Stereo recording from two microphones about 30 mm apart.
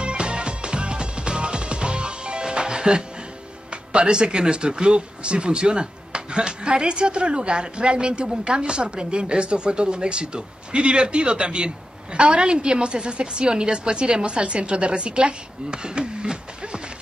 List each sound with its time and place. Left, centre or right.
0.0 s music: right
4.0 s speech: right
16.6 s a sound: right